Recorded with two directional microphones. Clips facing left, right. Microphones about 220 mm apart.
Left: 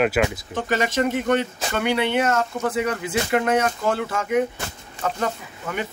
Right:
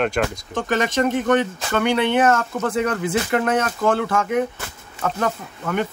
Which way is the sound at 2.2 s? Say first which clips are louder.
Right 3 dB; 55° right (ahead or behind).